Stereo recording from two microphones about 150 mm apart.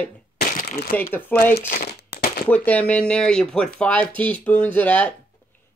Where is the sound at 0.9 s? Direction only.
10° left (ahead or behind).